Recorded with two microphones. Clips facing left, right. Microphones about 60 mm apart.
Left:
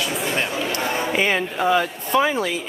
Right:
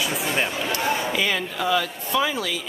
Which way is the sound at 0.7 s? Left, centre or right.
Left.